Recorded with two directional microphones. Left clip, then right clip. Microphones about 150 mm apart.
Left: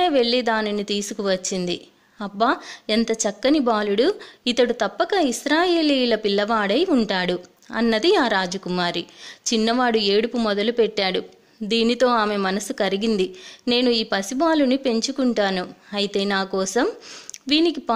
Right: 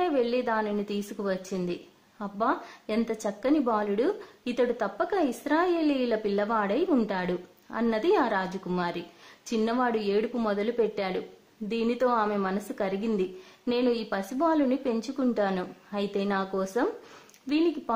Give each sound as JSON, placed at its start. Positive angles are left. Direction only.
{"t": 0.0, "sound": "a woman's voice", "side_deg": 25}